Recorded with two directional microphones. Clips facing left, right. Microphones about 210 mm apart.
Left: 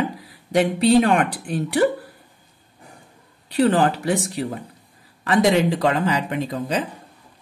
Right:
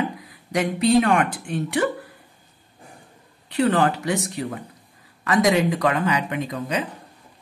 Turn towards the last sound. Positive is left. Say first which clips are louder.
# left 2 dB
turn(degrees=30)  # may be behind; listen again after turning